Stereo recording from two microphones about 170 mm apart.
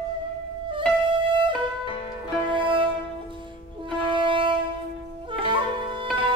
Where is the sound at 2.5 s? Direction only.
30° right (ahead or behind).